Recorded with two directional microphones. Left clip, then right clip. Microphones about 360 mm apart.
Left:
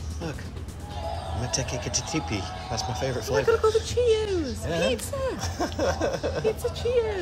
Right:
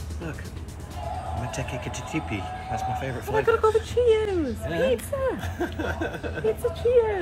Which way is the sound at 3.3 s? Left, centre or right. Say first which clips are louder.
Right 1 dB; centre.